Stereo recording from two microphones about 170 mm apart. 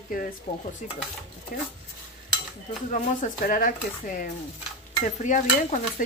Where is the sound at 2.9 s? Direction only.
55° left (ahead or behind).